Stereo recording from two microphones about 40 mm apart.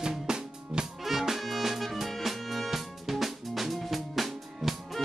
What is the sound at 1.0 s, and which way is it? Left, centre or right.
Music, centre.